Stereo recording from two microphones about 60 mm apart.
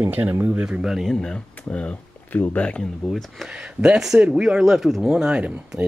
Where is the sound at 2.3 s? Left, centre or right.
Left.